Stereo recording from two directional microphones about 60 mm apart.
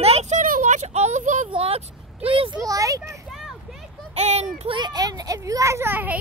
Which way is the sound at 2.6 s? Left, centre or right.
Right.